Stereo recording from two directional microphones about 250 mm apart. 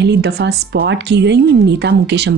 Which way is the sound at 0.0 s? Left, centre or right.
Right.